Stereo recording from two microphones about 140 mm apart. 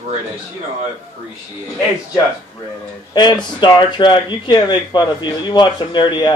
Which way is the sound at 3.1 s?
30° left (ahead or behind).